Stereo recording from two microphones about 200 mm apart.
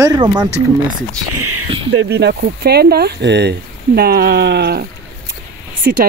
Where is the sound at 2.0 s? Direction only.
55° right (ahead or behind).